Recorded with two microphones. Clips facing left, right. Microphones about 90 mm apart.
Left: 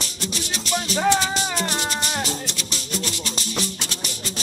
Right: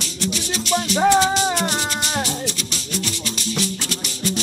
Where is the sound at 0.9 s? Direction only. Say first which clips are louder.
Right 5 dB; 20° right (ahead or behind).